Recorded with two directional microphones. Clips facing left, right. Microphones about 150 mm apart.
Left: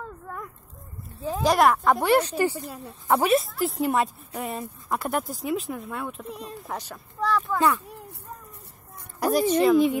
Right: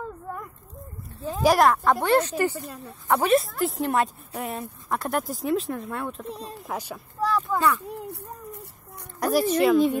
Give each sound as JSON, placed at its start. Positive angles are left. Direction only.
{"t": 1.4, "sound": "speech", "side_deg": 0}
{"t": 3.3, "sound": "a woman's voice", "side_deg": 0}
{"t": 6.7, "sound": "speech", "side_deg": -10}
{"t": 9.2, "sound": "speech", "side_deg": 0}